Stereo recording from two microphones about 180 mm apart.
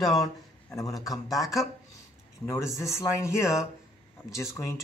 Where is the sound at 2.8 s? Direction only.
15° left (ahead or behind).